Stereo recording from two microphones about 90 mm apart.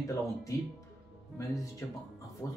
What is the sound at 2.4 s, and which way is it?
Speech, 35° left (ahead or behind).